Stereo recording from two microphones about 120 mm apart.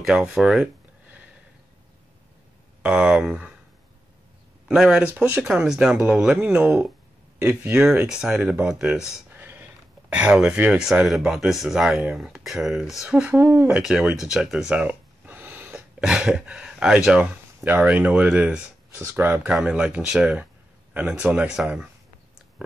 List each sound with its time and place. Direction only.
0.0 s speech: 5° right (ahead or behind)
2.8 s speech: 5° right (ahead or behind)
4.6 s speech: 5° right (ahead or behind)
13.4 s speech: 20° right (ahead or behind)
13.7 s speech: 5° right (ahead or behind)
19.5 s speech: 5° right (ahead or behind)